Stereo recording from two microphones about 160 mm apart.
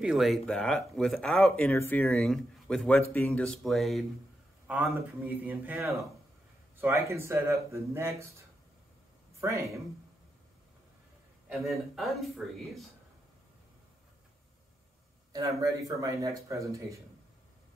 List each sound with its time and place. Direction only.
0.0 s speech: centre (ahead or behind)
4.9 s speech: 15° right (ahead or behind)
9.4 s speech: 20° right (ahead or behind)
11.4 s speech: centre (ahead or behind)
15.3 s speech: 20° right (ahead or behind)